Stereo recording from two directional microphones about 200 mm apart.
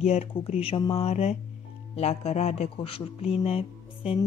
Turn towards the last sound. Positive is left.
turn(degrees=30)  # may be behind; listen again after turning